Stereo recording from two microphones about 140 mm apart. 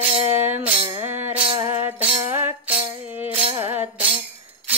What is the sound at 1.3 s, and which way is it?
Music, 40° right (ahead or behind).